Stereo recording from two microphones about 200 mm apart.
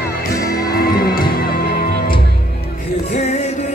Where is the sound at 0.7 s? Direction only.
45° left (ahead or behind).